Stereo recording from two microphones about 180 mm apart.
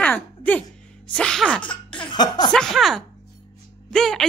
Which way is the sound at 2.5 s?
5° left (ahead or behind).